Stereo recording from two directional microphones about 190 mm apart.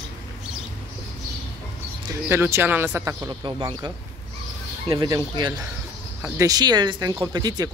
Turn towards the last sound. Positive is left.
turn(degrees=-20)  # may be behind; listen again after turning